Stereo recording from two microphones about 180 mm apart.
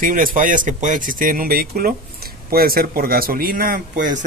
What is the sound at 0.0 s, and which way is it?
Speech, 50° right (ahead or behind).